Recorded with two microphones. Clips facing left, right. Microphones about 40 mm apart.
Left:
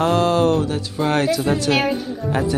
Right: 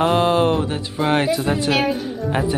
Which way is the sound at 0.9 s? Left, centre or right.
Centre.